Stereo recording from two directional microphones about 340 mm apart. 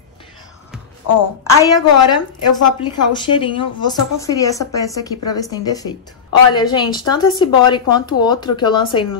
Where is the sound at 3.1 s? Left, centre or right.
Centre.